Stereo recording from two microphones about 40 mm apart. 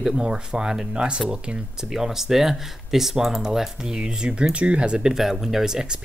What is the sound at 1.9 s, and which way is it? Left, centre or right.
Speech, centre.